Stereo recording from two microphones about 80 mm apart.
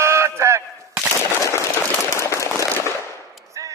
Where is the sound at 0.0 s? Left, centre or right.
Right.